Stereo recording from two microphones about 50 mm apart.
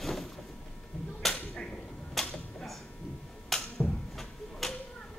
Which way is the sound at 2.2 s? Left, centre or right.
Centre.